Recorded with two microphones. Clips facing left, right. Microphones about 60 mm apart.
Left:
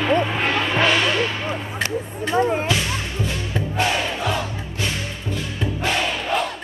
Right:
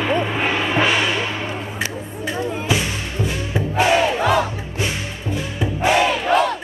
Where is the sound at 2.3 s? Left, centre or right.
Left.